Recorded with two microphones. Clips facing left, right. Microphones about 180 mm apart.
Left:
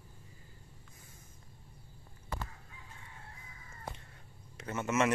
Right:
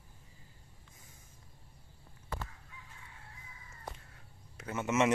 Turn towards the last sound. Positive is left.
turn(degrees=-15)  # may be behind; listen again after turning